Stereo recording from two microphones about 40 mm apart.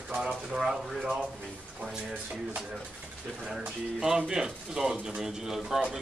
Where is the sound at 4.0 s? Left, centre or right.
Centre.